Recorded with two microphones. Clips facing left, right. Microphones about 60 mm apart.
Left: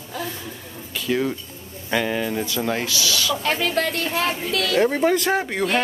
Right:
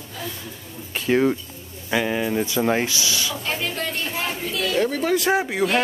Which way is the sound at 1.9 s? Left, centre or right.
Centre.